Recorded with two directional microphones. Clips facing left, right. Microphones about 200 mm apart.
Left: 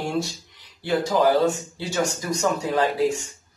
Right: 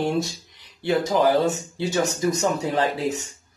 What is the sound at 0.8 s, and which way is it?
Speech, 20° right (ahead or behind).